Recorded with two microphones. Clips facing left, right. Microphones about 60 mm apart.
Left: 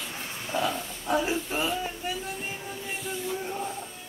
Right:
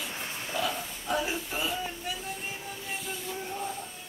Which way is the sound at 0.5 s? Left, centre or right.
Left.